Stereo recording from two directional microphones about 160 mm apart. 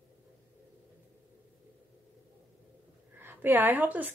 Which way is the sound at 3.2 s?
10° right (ahead or behind).